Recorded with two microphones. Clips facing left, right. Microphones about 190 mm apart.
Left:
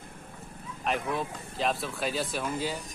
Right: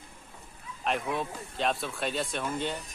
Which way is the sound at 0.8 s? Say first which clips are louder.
Even; centre (ahead or behind).